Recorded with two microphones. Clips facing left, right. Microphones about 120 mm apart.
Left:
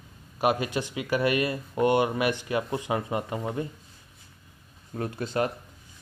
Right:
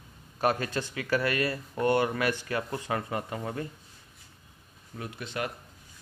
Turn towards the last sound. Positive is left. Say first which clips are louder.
# left 7 dB
turn(degrees=35)  # may be behind; listen again after turning